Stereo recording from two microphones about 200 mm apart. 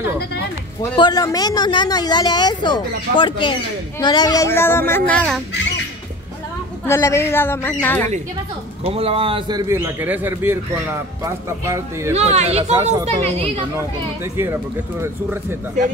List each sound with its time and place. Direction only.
0.9 s speech: 20° left (ahead or behind)
6.9 s speech: 15° left (ahead or behind)
8.8 s a man's voice: 30° right (ahead or behind)
12.1 s speech: 35° right (ahead or behind)
14.3 s a man's voice: 10° right (ahead or behind)